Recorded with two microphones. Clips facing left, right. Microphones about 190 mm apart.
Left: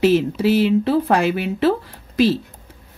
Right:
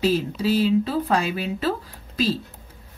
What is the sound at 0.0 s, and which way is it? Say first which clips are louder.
A woman's voice: left 6 dB; 65° left (ahead or behind).